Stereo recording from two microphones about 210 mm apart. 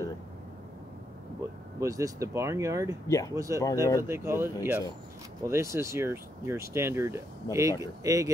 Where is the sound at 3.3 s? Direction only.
15° right (ahead or behind).